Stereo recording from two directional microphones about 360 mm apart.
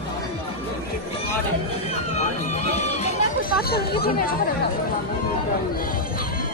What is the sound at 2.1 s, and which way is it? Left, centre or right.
Speech, centre.